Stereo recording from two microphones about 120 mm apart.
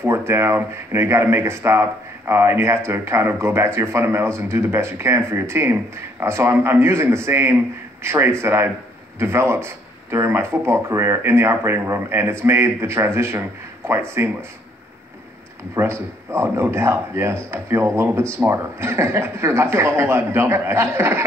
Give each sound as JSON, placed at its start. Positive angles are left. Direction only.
{"t": 0.0, "sound": "speech", "side_deg": -20}
{"t": 15.7, "sound": "speech", "side_deg": -20}